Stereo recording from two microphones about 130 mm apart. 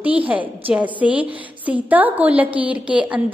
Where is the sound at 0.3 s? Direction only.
10° right (ahead or behind).